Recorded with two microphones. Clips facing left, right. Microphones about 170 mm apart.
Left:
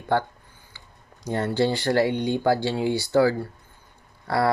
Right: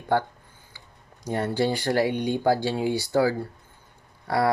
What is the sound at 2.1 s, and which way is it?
Speech, 20° left (ahead or behind).